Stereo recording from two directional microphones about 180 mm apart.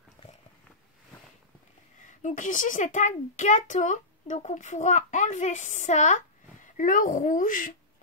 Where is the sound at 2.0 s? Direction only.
45° left (ahead or behind).